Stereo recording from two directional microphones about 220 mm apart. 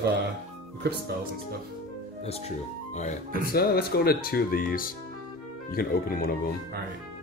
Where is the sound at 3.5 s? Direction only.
45° left (ahead or behind).